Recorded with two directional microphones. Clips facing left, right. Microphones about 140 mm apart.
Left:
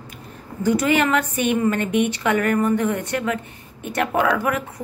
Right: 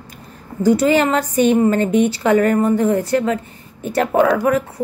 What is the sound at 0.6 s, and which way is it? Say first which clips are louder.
A woman's voice: right 5 dB; 35° right (ahead or behind).